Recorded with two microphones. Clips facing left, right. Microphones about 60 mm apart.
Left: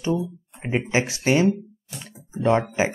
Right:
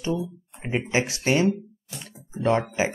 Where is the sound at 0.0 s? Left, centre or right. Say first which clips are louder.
Left 3 dB; left.